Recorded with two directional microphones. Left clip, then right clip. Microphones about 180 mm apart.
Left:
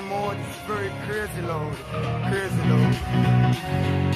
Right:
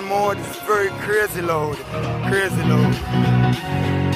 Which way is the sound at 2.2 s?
5° right (ahead or behind).